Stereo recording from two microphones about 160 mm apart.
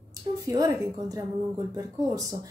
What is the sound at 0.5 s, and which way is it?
Speech, 20° right (ahead or behind).